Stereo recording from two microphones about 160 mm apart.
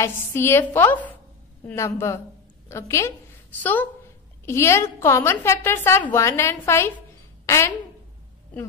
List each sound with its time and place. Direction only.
0.0 s a woman's voice: 15° left (ahead or behind)
4.5 s a woman's voice: 15° left (ahead or behind)